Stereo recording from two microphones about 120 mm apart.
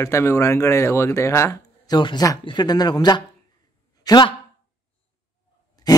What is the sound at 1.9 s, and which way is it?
Speech, 35° left (ahead or behind).